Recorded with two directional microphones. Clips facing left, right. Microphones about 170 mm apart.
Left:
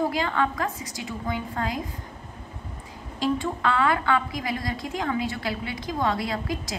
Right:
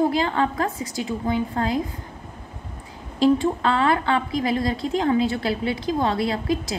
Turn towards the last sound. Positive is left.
turn(degrees=-30)  # may be behind; listen again after turning